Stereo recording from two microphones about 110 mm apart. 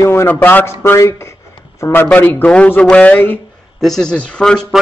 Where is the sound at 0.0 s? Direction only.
25° left (ahead or behind).